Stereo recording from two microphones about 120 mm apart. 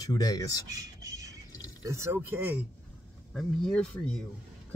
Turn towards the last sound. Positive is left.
turn(degrees=10)  # may be behind; listen again after turning